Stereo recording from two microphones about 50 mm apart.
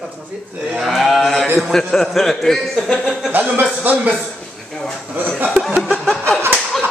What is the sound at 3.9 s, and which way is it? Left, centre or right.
Speech, right.